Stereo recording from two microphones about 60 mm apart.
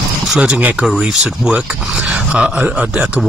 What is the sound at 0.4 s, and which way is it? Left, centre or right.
Speech, right.